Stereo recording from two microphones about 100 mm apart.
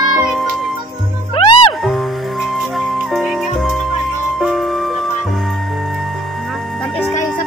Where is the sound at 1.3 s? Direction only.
60° left (ahead or behind).